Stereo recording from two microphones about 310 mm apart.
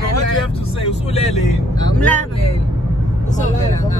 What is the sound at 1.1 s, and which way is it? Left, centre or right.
Vehicle, left.